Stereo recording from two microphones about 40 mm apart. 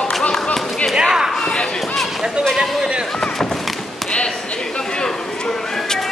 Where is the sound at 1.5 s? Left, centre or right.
Left.